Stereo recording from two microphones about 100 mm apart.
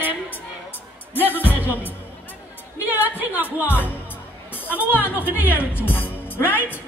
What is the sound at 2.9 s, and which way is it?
Speech, 15° right (ahead or behind).